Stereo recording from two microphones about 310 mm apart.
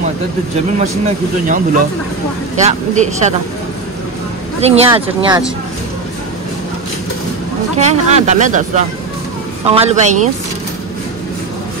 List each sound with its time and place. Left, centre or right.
0.7 s speech: right
2.6 s speech: right
4.6 s speech: centre
7.7 s speech: right